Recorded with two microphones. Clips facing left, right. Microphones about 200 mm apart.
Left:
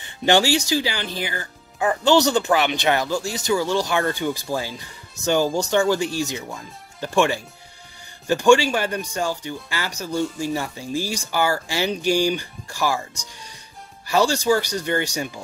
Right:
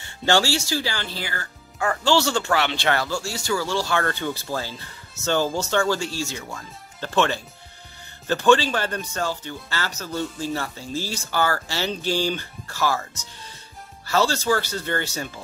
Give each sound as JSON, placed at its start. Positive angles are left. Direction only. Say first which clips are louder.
{"t": 0.0, "sound": "speech", "louder": "left 3 dB", "side_deg": 15}